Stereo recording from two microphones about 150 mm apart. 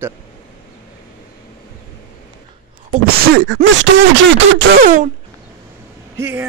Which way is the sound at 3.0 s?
85° right.